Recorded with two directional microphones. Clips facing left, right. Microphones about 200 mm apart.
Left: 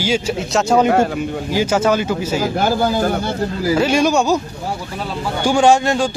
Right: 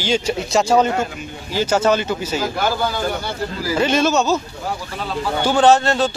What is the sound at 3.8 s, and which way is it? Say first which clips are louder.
Speech: left 1 dB; 10° left (ahead or behind).